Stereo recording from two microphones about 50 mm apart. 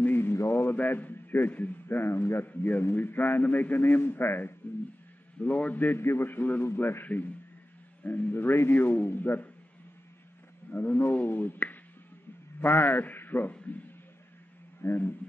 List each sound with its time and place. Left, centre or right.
0.0 s a sound: left
0.7 s a man's voice: left
2.4 s a man's voice: left
5.6 s a sound: left
5.9 s a man's voice: left
7.1 s a sound: left
8.0 s a man's voice: left
8.4 s a man's voice: left
10.7 s a man's voice: left
11.2 s a sound: left
12.5 s a man's voice: left
13.5 s a man's voice: left
14.8 s speech: left